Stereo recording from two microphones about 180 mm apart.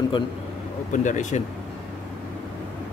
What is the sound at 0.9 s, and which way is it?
Speech, 45° left (ahead or behind).